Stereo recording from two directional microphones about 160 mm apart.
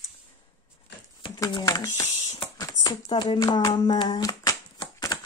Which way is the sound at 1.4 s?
20° left (ahead or behind).